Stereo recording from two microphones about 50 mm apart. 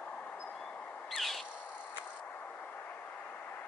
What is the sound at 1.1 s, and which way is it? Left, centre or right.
Owl, centre.